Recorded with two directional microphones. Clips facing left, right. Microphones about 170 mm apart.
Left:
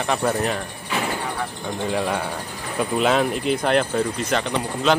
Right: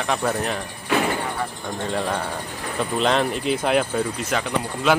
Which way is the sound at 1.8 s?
5° left (ahead or behind).